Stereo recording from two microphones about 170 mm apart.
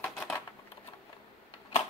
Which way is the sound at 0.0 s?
10° left (ahead or behind).